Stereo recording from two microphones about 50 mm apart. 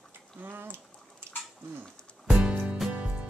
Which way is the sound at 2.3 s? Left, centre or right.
Right.